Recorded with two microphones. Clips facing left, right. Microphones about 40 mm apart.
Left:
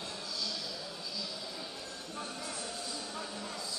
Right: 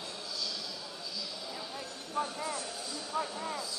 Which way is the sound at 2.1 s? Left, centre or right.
Centre.